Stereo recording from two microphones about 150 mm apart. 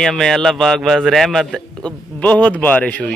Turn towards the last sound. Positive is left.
turn(degrees=10)  # may be behind; listen again after turning